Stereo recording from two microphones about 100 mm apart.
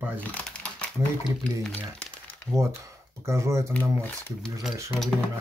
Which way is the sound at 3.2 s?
30° right (ahead or behind).